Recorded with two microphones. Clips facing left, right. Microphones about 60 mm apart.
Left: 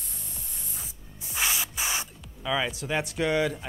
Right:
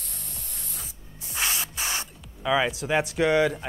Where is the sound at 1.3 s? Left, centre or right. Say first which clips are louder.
Even; centre.